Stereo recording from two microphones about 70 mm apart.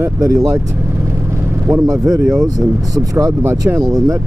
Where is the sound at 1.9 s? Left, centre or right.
Right.